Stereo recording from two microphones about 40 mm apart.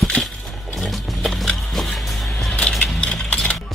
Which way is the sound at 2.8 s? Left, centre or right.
Left.